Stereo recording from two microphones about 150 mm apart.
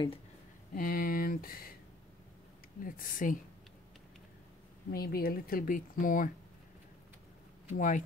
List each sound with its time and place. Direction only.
0.7 s speech: 70° left (ahead or behind)
2.8 s speech: 65° left (ahead or behind)
4.9 s speech: 85° left; by 6.3 s 60° left (ahead or behind)
7.7 s speech: 60° left (ahead or behind)